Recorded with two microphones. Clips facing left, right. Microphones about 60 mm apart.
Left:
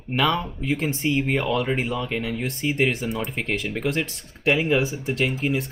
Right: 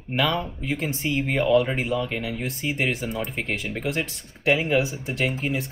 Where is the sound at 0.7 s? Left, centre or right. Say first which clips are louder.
Left 2 dB; centre.